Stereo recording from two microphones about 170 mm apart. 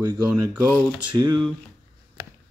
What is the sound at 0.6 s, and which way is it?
Speech, 10° left (ahead or behind).